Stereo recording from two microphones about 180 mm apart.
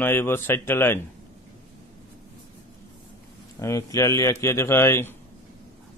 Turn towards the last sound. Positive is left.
turn(degrees=15)  # may be behind; listen again after turning